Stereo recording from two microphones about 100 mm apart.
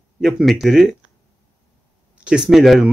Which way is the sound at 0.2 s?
10° right (ahead or behind).